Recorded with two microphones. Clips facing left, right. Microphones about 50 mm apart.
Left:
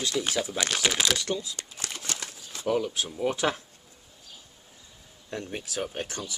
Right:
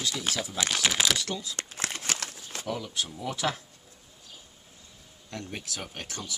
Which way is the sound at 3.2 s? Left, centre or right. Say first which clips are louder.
Left 5 dB; left.